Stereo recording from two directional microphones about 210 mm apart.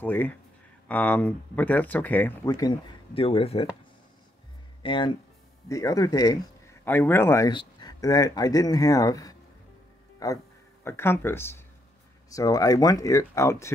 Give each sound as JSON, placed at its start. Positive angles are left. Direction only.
{"t": 0.0, "sound": "speech", "side_deg": 10}
{"t": 3.2, "sound": "speech", "side_deg": 25}
{"t": 4.8, "sound": "speech", "side_deg": 20}